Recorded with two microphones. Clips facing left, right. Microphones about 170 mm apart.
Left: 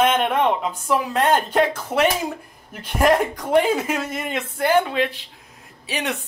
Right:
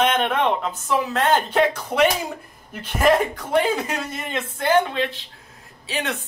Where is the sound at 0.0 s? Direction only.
5° left (ahead or behind).